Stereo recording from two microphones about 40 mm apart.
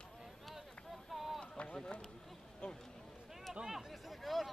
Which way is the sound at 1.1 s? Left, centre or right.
Centre.